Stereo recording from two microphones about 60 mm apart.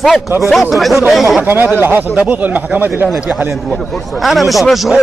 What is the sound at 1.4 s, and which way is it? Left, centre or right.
Speech, right.